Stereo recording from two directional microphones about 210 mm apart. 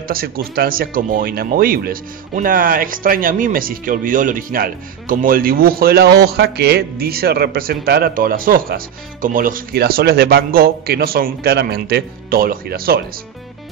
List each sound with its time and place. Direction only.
0.1 s speech: 45° right (ahead or behind)